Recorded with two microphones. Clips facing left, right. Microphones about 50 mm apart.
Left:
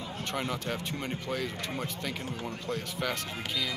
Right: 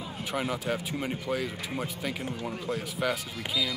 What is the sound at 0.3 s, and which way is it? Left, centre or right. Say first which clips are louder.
Speech: right 3 dB; centre.